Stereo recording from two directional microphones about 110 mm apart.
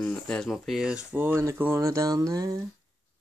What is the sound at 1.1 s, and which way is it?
Speech, 20° right (ahead or behind).